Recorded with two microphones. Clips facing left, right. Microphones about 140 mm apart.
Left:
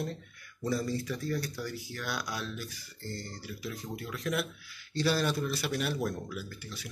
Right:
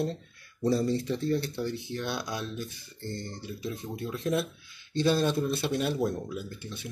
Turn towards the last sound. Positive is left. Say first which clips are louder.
# right 3 dB
turn(degrees=-25)  # may be behind; listen again after turning